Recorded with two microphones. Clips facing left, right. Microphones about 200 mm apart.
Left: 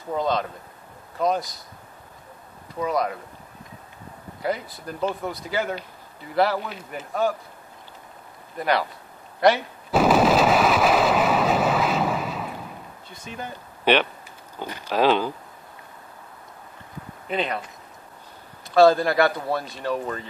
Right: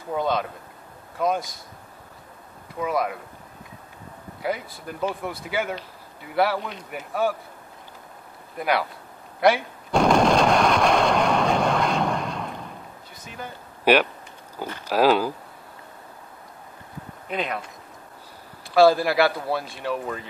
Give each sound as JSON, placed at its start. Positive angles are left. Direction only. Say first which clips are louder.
{"t": 0.1, "sound": "speech", "louder": "even", "side_deg": -5}
{"t": 2.8, "sound": "speech", "louder": "left 1 dB", "side_deg": -5}
{"t": 4.4, "sound": "speech", "louder": "left 1 dB", "side_deg": -5}
{"t": 8.5, "sound": "speech", "louder": "left 1 dB", "side_deg": -5}
{"t": 9.4, "sound": "artillery fire", "louder": "left 1 dB", "side_deg": 0}
{"t": 13.2, "sound": "speech", "louder": "left 2 dB", "side_deg": 20}
{"t": 13.9, "sound": "speech", "louder": "right 2 dB", "side_deg": -10}
{"t": 17.3, "sound": "speech", "louder": "left 2 dB", "side_deg": 0}
{"t": 18.8, "sound": "speech", "louder": "left 1 dB", "side_deg": -5}